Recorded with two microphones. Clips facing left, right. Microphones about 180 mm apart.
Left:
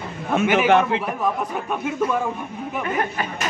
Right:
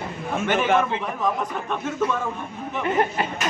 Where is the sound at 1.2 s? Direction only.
10° left (ahead or behind).